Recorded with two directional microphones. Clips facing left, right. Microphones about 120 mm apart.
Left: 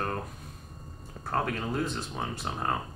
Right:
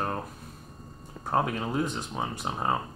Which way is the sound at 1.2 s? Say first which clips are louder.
Right 3 dB; 15° right (ahead or behind).